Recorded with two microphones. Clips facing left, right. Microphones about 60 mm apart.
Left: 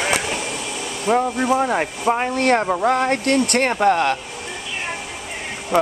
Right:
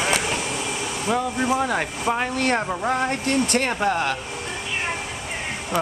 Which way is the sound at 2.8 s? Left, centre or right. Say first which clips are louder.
Left 5 dB; left.